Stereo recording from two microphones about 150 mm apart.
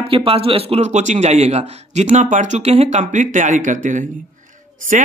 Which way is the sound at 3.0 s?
55° right (ahead or behind).